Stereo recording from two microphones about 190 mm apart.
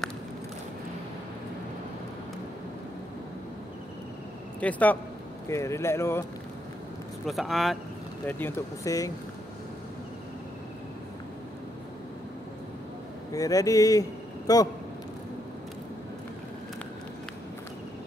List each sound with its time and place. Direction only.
4.6 s speech: 10° left (ahead or behind)
7.2 s speech: centre (ahead or behind)
8.3 s speech: 10° left (ahead or behind)
13.3 s a man's voice: 20° left (ahead or behind)